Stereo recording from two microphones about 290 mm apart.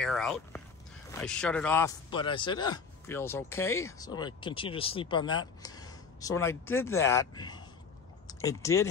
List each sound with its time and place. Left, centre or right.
0.0 s speech: centre